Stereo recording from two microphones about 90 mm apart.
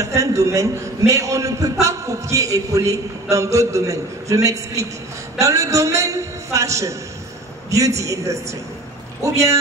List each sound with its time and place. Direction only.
0.0 s a man's voice: 35° right (ahead or behind)